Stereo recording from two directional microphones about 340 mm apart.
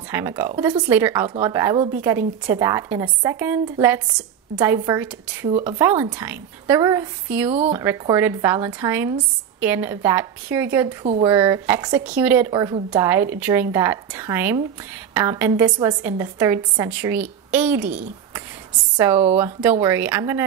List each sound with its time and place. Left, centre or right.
0.1 s a woman's voice: centre
5.5 s speech: right
5.8 s a woman's voice: centre
18.9 s a woman's voice: centre